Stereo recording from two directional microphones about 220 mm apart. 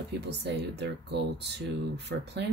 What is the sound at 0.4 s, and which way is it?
Speech, 50° right (ahead or behind).